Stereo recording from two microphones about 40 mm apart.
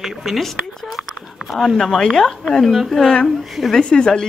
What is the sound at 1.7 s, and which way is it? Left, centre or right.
A woman's voice, centre.